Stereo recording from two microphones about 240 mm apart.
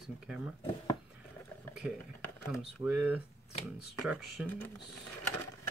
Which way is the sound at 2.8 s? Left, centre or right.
Centre.